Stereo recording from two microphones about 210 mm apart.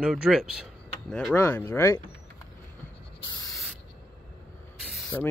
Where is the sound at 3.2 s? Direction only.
15° left (ahead or behind).